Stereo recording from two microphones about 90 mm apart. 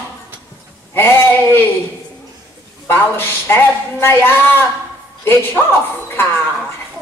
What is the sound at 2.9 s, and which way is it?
A woman's voice, 25° left (ahead or behind).